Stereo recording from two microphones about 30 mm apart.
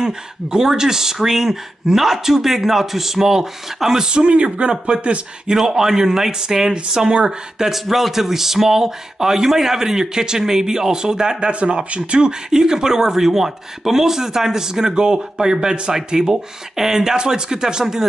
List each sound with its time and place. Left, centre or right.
0.0 s speech: right
5.7 s speech: centre
12.4 s speech: right